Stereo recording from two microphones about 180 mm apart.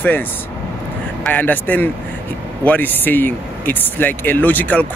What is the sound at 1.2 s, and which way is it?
Speech, 10° left (ahead or behind).